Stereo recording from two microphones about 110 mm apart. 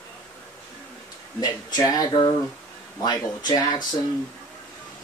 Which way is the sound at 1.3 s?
35° left (ahead or behind).